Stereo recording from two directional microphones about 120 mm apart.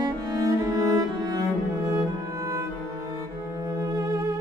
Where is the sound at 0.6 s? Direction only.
25° right (ahead or behind).